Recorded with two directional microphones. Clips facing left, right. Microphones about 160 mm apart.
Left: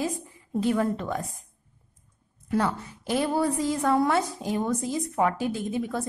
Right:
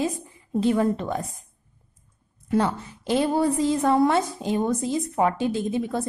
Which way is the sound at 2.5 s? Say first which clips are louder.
Right 3 dB; 25° right (ahead or behind).